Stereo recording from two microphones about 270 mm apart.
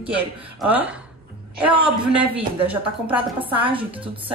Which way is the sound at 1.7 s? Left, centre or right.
Centre.